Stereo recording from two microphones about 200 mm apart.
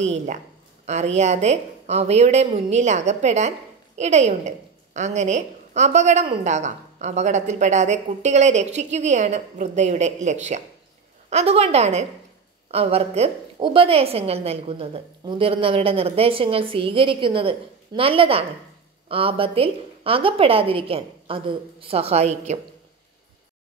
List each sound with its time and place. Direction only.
0.0 s a woman's voice: 35° right (ahead or behind)